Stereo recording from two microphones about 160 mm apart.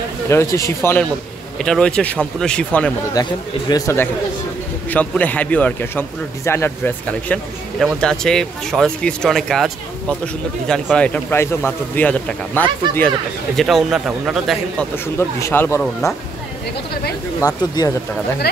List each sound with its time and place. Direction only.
0.3 s speech: 20° left (ahead or behind)
1.6 s speech: 5° left (ahead or behind)
3.2 s speech: 25° left (ahead or behind); by 14.9 s centre (ahead or behind)
15.1 s speech: 15° left (ahead or behind)
17.4 s speech: 20° left (ahead or behind)